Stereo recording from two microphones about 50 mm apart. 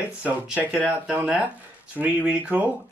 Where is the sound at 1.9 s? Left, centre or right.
Right.